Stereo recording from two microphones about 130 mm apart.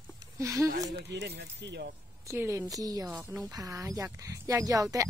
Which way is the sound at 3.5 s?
25° right (ahead or behind).